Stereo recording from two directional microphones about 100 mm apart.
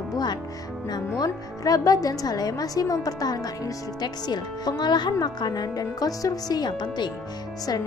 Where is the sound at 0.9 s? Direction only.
40° left (ahead or behind).